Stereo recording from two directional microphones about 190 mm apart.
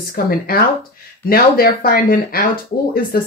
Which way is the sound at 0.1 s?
50° left (ahead or behind).